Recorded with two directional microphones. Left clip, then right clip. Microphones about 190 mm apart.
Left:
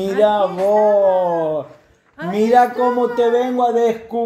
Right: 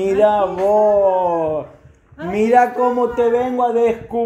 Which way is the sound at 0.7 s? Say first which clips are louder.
Even; 15° left (ahead or behind).